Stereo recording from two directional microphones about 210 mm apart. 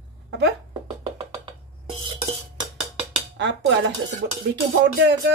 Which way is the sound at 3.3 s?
55° right (ahead or behind).